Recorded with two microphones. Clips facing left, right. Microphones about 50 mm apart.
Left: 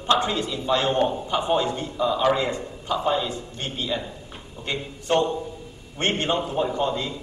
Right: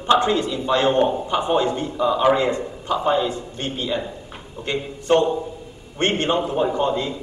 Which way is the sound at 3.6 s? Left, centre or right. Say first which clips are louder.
Right 4 dB; right.